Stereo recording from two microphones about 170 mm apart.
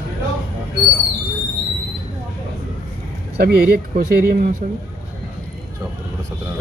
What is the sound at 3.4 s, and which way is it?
Speech, 65° right (ahead or behind).